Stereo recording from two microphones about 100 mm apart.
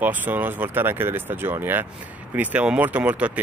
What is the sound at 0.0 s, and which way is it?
Speech, 20° right (ahead or behind).